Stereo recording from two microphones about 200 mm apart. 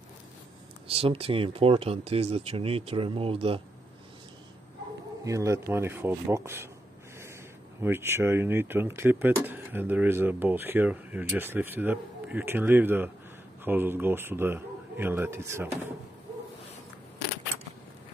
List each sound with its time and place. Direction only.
0.8 s speech: 30° right (ahead or behind)
5.2 s speech: 15° right (ahead or behind)
7.8 s speech: 10° right (ahead or behind)